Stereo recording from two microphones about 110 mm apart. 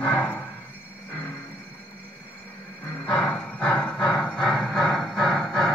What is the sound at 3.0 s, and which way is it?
Squeal, 5° left (ahead or behind).